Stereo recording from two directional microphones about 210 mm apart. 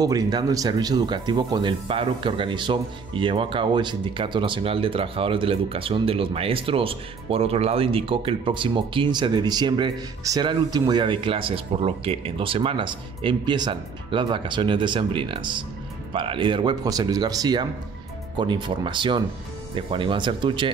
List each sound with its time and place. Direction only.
0.0 s speech: 20° right (ahead or behind)